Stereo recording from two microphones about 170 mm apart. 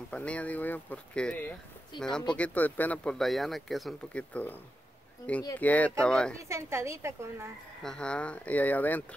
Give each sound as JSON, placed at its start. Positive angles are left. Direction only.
{"t": 0.1, "sound": "speech", "side_deg": 5}
{"t": 6.5, "sound": "a woman's voice", "side_deg": -15}
{"t": 7.8, "sound": "speech", "side_deg": 5}